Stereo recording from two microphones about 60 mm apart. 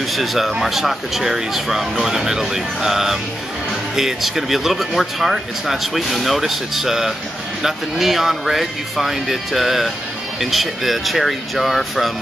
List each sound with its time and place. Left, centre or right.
0.1 s speech: centre